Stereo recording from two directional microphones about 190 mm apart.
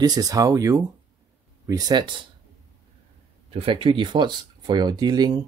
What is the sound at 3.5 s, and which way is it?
Speech, 30° right (ahead or behind).